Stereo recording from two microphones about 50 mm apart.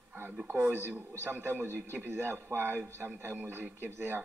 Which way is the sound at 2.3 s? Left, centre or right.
Right.